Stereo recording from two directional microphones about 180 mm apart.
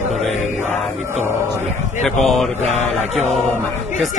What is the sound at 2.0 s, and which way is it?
Chant, centre (ahead or behind).